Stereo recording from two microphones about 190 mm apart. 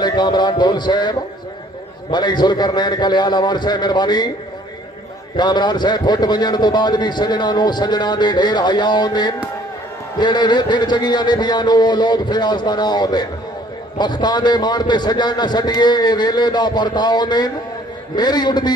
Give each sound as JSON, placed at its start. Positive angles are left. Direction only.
{"t": 0.0, "sound": "a sound", "side_deg": 20}
{"t": 2.0, "sound": "a man's voice", "side_deg": 25}
{"t": 5.3, "sound": "a man's voice", "side_deg": 25}